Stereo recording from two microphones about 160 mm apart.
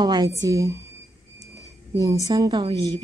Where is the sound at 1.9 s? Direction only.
20° right (ahead or behind).